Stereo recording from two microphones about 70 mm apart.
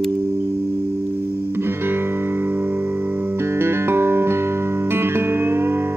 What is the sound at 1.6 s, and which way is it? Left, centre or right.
Music, right.